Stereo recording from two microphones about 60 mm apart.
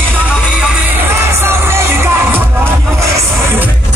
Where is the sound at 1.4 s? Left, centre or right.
Right.